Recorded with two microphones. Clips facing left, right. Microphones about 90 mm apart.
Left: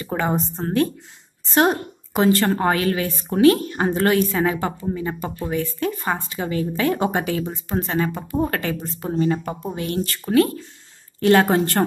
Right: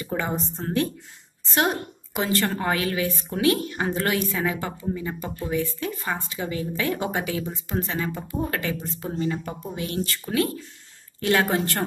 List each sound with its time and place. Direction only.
0.0 s a woman's voice: 50° left (ahead or behind)